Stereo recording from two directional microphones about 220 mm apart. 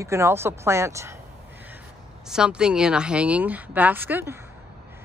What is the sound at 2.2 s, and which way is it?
A woman's voice, 5° right (ahead or behind).